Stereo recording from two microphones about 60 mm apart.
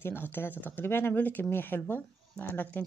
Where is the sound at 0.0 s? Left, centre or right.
Left.